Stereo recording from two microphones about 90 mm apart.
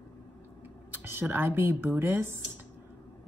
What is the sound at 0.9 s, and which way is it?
Speech, 25° right (ahead or behind).